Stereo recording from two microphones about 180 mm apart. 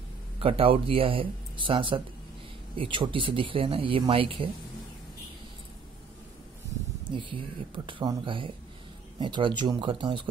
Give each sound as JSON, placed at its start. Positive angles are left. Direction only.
{"t": 0.4, "sound": "speech", "side_deg": -30}
{"t": 7.1, "sound": "speech", "side_deg": -25}